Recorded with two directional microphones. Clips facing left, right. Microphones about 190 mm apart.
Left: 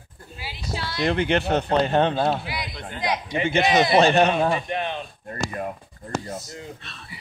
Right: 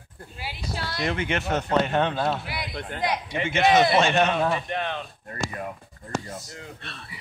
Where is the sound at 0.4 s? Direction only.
55° right (ahead or behind).